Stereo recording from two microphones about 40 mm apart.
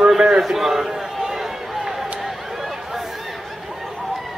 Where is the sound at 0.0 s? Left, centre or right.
Centre.